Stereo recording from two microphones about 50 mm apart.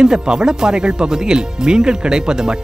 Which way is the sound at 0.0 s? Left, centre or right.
Centre.